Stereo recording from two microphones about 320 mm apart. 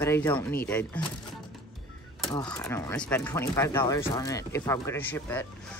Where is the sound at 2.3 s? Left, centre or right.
Centre.